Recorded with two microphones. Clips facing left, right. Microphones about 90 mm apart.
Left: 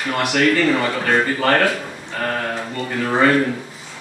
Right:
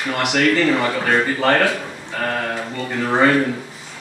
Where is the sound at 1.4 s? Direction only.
5° right (ahead or behind).